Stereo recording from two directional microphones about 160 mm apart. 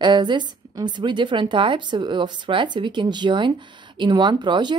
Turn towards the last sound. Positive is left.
turn(degrees=-30)  # may be behind; listen again after turning